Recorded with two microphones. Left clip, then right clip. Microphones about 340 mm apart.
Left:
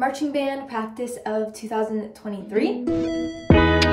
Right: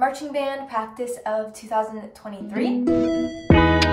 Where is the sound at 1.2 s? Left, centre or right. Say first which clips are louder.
Left 1 dB; right.